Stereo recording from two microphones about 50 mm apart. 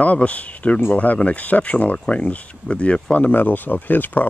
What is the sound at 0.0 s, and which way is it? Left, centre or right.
Speech, left.